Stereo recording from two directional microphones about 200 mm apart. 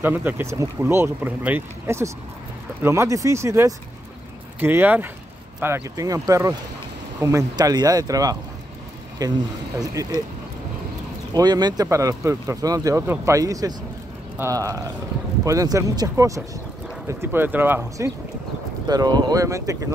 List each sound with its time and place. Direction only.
0.0 s speech: 10° right (ahead or behind)
11.3 s speech: 20° right (ahead or behind)